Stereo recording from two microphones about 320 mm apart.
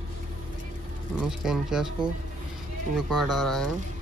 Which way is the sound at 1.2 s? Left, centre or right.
Centre.